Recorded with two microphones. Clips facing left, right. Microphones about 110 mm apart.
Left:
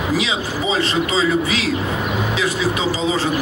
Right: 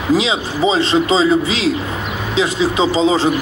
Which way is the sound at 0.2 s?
25° right (ahead or behind).